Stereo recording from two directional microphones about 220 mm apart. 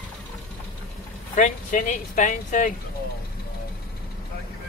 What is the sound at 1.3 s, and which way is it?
Speech, 35° left (ahead or behind).